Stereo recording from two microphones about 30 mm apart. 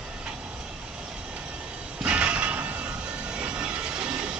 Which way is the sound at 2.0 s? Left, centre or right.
Right.